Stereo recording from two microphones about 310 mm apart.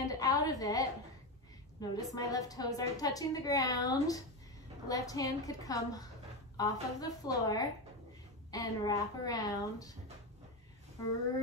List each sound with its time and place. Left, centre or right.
0.0 s a woman's voice: centre